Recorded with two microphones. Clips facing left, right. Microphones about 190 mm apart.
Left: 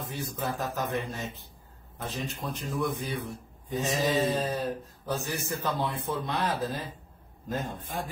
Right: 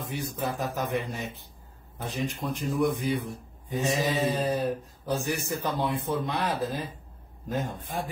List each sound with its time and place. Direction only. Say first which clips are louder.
0.1 s speech: right 3 dB; 15° right (ahead or behind)